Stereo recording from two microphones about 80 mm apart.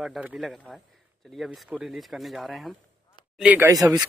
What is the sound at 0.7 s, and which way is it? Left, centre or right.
Speech, centre.